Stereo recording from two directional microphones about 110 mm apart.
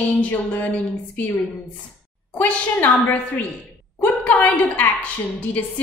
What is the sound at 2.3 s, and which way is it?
Speech, 15° left (ahead or behind).